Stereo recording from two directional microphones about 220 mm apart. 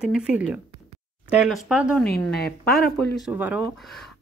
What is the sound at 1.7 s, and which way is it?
Speech, 5° right (ahead or behind).